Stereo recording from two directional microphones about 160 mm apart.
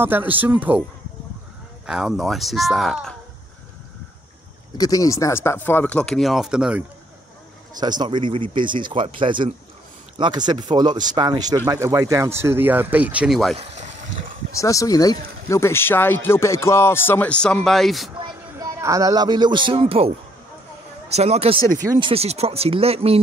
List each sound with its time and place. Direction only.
0.0 s speech: 10° right (ahead or behind)
1.9 s speech: centre (ahead or behind)
4.7 s speech: 20° left (ahead or behind); by 6.8 s 5° right (ahead or behind)
7.8 s speech: 25° right (ahead or behind); by 13.6 s centre (ahead or behind)
13.6 s a sound: 45° right (ahead or behind)
14.6 s speech: 20° left (ahead or behind); by 18.1 s centre (ahead or behind)
18.6 s speech: 20° right (ahead or behind)
21.1 s speech: 40° right (ahead or behind)